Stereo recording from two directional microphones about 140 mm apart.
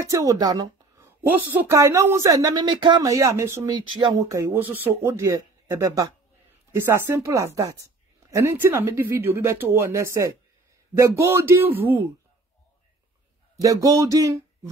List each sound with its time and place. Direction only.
0.1 s a woman's voice: 25° right (ahead or behind)
1.0 s a woman's voice: 15° right (ahead or behind)
3.9 s a woman's voice: 30° right (ahead or behind); by 12.0 s 15° right (ahead or behind)
13.6 s speech: 25° right (ahead or behind)